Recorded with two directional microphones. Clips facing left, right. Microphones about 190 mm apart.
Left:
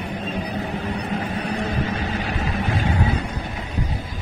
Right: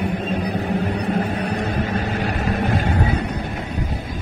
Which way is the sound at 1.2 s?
50° right (ahead or behind).